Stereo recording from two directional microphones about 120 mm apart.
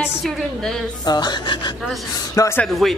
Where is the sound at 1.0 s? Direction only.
35° left (ahead or behind).